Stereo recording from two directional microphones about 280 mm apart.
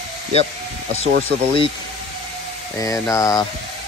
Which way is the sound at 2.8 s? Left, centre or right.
Centre.